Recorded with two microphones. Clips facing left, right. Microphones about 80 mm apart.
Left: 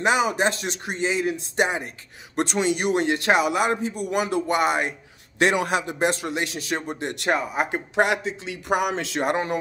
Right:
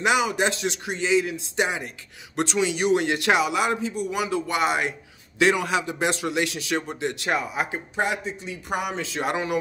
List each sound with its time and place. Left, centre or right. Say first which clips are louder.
0.0 s speech: left 1 dB; left
3.0 s speech: left 1 dB; left
7.9 s speech: left 6 dB; left
9.2 s speech: left 2 dB; left